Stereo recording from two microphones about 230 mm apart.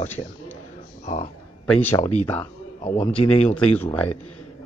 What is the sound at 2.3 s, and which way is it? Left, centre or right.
Speech, left.